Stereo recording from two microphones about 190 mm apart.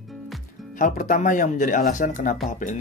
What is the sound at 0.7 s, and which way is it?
Speech, 45° left (ahead or behind).